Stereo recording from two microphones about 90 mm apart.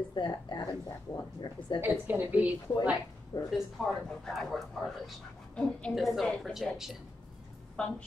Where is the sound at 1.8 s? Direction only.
20° right (ahead or behind).